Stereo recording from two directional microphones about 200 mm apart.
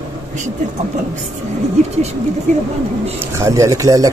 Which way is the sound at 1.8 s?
35° right (ahead or behind).